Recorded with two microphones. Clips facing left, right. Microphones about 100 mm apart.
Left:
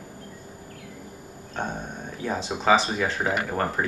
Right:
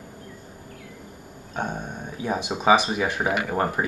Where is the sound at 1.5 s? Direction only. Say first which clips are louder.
Right 2 dB; 10° right (ahead or behind).